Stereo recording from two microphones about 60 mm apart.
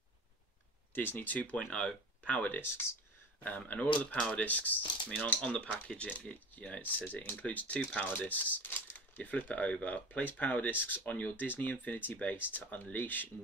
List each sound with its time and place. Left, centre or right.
0.9 s speech: left
2.6 s speech: left
3.4 s speech: left